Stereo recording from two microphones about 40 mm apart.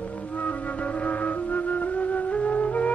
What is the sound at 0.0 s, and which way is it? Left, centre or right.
Flute, left.